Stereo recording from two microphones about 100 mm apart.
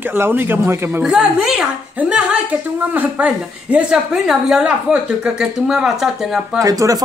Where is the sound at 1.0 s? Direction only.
5° right (ahead or behind).